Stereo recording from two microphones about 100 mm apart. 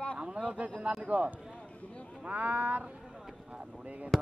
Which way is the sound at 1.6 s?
10° left (ahead or behind).